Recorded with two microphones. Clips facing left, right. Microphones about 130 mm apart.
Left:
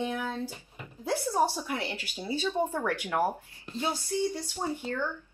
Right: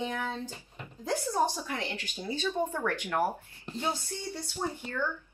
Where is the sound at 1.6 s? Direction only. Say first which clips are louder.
Left 2 dB; 10° left (ahead or behind).